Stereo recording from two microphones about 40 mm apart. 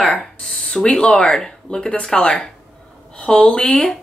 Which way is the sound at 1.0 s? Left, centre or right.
Left.